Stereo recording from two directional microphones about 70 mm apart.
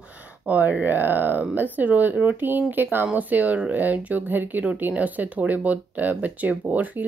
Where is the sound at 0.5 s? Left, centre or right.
Right.